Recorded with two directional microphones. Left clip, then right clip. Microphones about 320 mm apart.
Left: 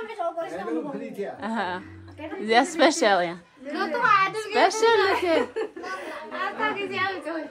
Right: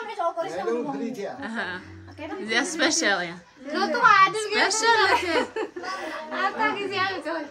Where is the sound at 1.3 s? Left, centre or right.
Centre.